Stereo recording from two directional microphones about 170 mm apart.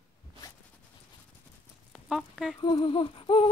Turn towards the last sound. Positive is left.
turn(degrees=30)  # may be behind; listen again after turning